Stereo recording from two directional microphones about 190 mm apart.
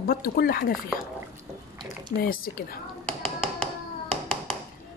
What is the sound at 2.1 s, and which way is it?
Speech, 50° left (ahead or behind).